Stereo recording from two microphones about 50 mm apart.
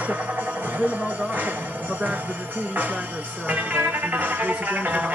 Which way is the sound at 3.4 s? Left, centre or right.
Right.